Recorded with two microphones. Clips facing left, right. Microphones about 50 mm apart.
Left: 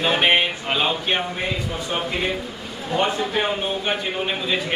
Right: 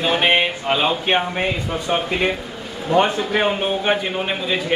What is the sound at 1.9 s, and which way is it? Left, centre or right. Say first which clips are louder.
Speech: right 5 dB; right.